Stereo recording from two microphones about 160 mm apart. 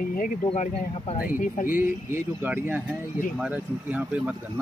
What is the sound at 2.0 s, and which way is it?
Speech, 10° right (ahead or behind).